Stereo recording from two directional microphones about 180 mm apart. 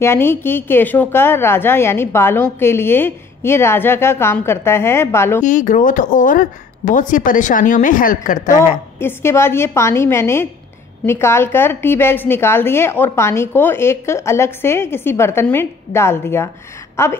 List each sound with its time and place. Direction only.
0.0 s a woman's voice: 15° left (ahead or behind)
5.4 s speech: 45° left (ahead or behind)
9.0 s a woman's voice: 15° left (ahead or behind)
16.9 s a sound: 15° left (ahead or behind)